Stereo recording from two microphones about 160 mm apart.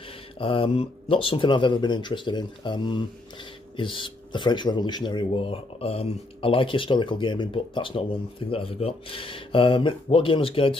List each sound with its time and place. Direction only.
0.4 s speech: 35° left (ahead or behind)